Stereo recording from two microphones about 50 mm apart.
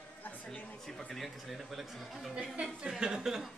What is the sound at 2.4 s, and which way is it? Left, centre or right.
A woman's voice, right.